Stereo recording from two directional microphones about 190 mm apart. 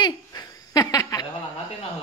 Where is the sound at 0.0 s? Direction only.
20° left (ahead or behind).